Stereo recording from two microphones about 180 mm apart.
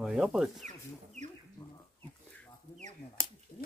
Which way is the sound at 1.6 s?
20° left (ahead or behind).